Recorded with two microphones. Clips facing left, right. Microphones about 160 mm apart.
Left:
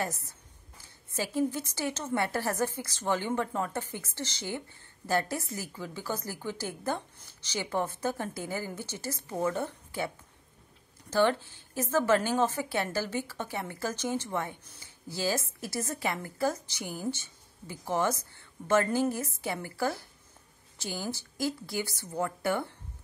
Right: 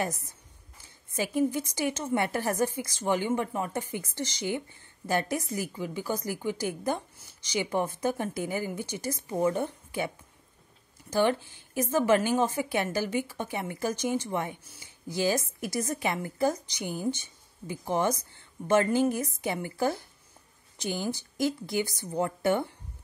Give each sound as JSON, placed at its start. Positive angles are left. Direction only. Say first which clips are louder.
{"t": 0.0, "sound": "a woman's voice", "louder": "right 2 dB", "side_deg": -15}